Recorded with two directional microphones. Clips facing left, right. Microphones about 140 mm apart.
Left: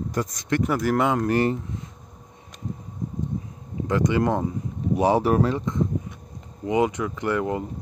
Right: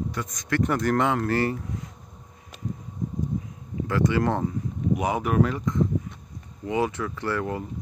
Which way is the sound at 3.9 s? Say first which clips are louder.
Left 2 dB; 20° left (ahead or behind).